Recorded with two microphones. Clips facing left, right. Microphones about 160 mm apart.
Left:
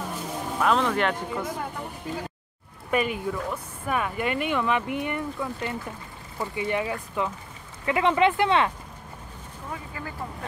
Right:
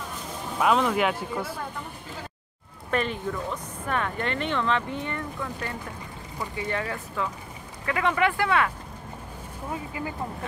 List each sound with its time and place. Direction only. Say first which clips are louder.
0.6 s speech: right 1 dB; 5° right (ahead or behind)
2.9 s speech: left 2 dB; 10° left (ahead or behind)
9.7 s speech: right 4 dB; 20° right (ahead or behind)